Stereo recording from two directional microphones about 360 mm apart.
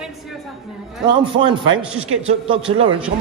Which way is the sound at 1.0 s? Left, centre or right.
Centre.